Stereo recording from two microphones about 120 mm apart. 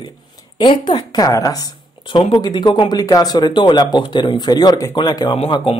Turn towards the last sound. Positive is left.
turn(degrees=50)  # may be behind; listen again after turning